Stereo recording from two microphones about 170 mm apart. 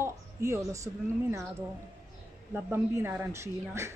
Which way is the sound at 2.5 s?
15° right (ahead or behind).